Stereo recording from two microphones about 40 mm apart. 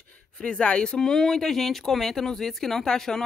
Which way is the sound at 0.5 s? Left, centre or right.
Left.